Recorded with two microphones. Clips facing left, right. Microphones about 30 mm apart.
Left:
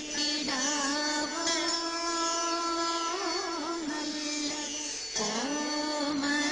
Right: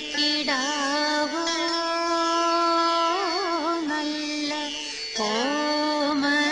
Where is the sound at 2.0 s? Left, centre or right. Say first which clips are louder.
Right 9 dB; right.